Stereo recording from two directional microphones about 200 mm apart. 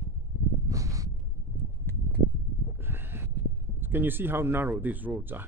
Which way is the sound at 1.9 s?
10° left (ahead or behind).